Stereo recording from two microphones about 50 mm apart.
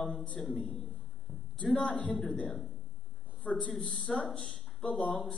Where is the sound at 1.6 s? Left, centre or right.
Centre.